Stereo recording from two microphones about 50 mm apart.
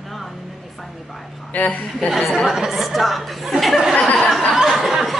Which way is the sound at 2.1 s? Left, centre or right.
Centre.